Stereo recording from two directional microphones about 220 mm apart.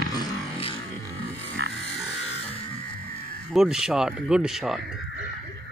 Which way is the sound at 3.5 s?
5° right (ahead or behind).